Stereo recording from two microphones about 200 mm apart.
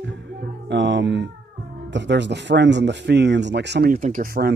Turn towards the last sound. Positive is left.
turn(degrees=-45)  # may be behind; listen again after turning